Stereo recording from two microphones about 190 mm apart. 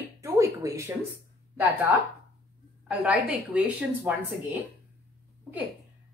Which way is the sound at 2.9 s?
5° right (ahead or behind).